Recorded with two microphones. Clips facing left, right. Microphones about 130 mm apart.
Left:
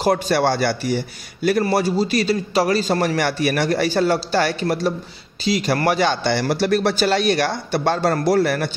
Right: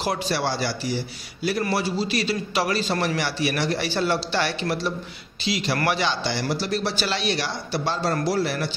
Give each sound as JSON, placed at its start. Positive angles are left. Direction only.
{"t": 0.0, "sound": "speech", "side_deg": 50}
{"t": 1.6, "sound": "a man's voice", "side_deg": 45}